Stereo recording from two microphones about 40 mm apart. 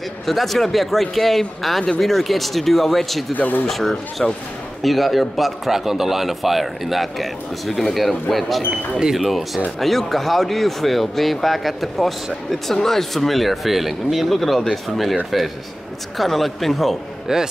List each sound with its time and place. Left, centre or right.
0.3 s speech: centre
3.3 s speech: left
3.6 s speech: centre
4.8 s speech: centre
16.2 s speech: centre
17.3 s speech: centre